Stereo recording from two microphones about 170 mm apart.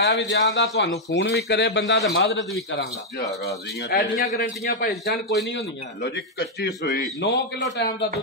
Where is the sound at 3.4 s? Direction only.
70° left (ahead or behind).